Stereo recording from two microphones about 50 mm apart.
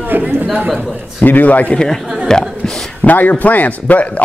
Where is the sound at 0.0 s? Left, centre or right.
Right.